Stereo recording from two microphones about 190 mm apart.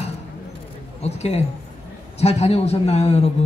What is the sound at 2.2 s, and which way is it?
A man's voice, 35° left (ahead or behind).